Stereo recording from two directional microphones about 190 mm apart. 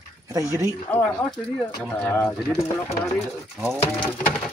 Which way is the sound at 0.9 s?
5° left (ahead or behind).